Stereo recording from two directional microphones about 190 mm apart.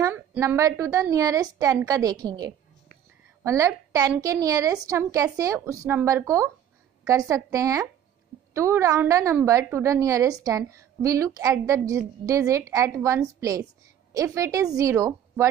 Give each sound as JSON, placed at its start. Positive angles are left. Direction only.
{"t": 0.0, "sound": "a woman's voice", "side_deg": -15}